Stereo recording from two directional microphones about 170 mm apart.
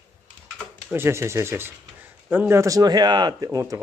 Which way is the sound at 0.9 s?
15° right (ahead or behind).